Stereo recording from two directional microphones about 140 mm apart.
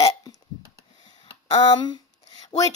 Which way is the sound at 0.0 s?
30° left (ahead or behind).